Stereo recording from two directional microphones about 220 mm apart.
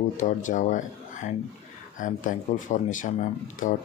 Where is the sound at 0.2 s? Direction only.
35° left (ahead or behind).